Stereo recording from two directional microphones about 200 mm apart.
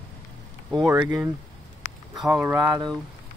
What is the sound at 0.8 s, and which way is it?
Speech, 20° right (ahead or behind).